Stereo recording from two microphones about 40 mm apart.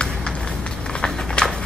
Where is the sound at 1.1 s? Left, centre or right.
Centre.